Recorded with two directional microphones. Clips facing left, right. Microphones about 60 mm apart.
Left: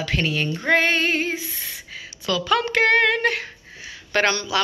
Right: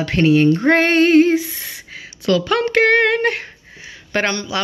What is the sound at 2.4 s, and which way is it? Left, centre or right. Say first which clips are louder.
A woman's voice: right 1 dB; right.